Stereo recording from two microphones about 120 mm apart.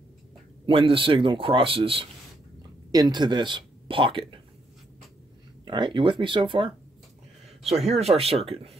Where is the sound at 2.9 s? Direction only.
35° right (ahead or behind).